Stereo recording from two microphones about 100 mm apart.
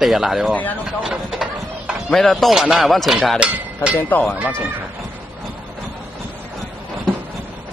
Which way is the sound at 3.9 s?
15° left (ahead or behind).